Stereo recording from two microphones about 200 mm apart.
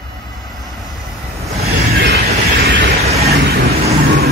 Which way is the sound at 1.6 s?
50° right (ahead or behind).